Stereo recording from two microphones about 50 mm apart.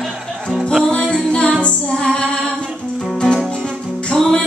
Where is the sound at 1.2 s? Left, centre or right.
Centre.